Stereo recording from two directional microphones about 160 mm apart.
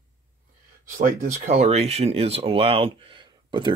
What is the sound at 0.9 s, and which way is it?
Speech, 60° right (ahead or behind).